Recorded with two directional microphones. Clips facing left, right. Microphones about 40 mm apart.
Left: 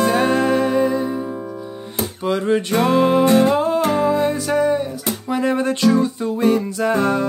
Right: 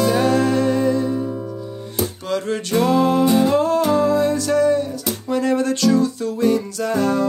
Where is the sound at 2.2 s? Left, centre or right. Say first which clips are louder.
Left 7 dB; centre.